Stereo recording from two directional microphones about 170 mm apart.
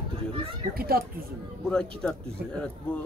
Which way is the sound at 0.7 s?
60° right (ahead or behind).